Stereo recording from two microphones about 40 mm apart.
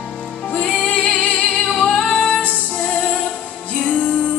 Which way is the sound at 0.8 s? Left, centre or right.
Centre.